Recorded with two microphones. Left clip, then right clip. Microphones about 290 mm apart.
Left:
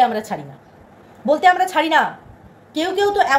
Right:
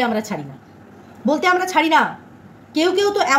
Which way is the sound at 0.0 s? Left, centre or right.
Centre.